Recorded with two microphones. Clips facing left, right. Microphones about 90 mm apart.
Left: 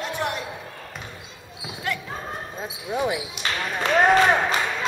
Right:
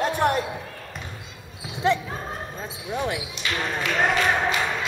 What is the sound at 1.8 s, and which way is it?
Basketball bounce, 25° right (ahead or behind).